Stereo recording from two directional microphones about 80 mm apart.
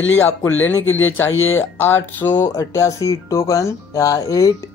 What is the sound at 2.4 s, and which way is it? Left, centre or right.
Speech, left.